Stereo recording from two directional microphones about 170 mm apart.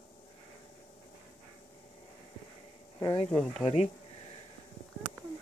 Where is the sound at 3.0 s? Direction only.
25° left (ahead or behind).